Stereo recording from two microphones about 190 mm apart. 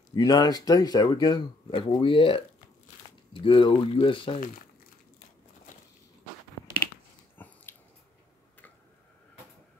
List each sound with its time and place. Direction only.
0.1 s speech: 20° left (ahead or behind)
7.4 s dog: 10° left (ahead or behind)